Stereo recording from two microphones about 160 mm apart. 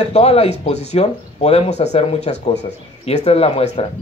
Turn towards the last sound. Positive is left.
turn(degrees=40)  # may be behind; listen again after turning